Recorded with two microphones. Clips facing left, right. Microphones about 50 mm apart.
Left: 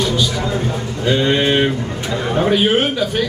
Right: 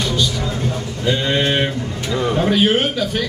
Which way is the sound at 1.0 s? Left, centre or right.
Centre.